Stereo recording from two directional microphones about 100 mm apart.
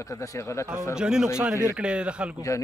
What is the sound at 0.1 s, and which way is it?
Speech, 30° left (ahead or behind).